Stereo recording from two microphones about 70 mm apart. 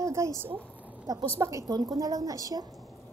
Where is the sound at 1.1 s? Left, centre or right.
Right.